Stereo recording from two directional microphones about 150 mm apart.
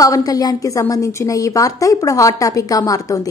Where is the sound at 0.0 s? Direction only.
25° left (ahead or behind).